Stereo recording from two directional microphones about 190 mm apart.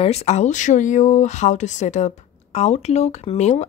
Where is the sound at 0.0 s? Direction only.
35° left (ahead or behind).